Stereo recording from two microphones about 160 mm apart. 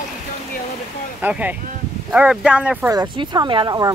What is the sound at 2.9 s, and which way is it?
Speech, 25° right (ahead or behind).